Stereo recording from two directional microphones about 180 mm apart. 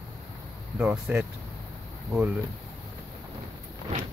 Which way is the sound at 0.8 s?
5° right (ahead or behind).